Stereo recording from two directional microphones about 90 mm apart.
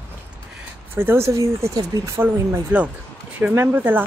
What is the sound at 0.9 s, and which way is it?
Speech, 25° right (ahead or behind).